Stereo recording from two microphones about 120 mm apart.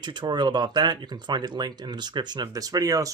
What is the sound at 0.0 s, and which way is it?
Speech, 35° right (ahead or behind).